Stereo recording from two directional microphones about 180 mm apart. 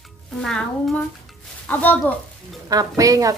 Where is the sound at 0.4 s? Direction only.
5° left (ahead or behind).